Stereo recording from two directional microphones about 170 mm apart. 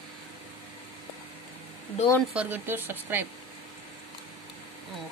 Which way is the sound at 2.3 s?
10° right (ahead or behind).